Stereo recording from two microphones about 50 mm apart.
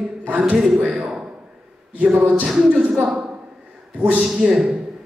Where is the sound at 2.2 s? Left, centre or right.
Right.